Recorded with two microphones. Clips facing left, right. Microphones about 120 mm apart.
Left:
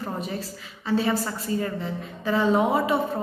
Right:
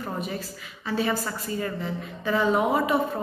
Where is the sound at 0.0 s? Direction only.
30° left (ahead or behind).